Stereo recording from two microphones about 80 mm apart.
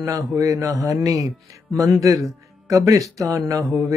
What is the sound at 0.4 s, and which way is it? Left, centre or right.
Speech, right.